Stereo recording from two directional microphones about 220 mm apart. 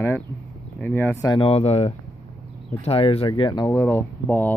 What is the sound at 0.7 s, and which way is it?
Speech, 10° left (ahead or behind).